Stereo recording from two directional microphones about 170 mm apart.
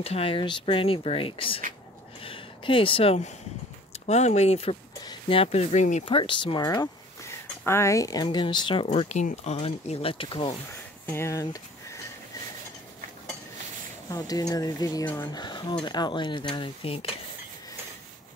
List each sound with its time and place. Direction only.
0.0 s speech: 35° left (ahead or behind)
6.0 s speech: 30° left (ahead or behind)
10.7 s a sound: 15° left (ahead or behind)
14.1 s speech: 20° left (ahead or behind)